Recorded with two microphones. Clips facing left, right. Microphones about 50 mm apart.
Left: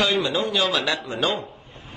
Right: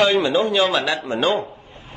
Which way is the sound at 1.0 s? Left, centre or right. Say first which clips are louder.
Right 5 dB; right.